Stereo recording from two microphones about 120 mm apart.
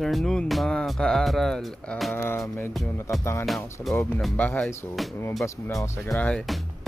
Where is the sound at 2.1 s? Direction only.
20° left (ahead or behind).